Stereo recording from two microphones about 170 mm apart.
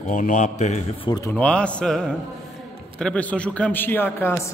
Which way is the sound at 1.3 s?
5° left (ahead or behind).